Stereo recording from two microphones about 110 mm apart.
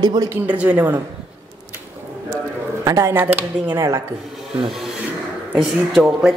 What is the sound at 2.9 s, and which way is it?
Speech, 30° right (ahead or behind).